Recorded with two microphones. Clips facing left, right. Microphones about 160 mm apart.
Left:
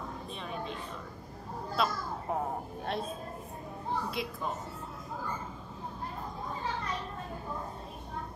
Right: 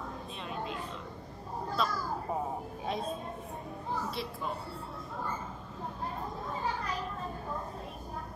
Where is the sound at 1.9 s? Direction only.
35° right (ahead or behind).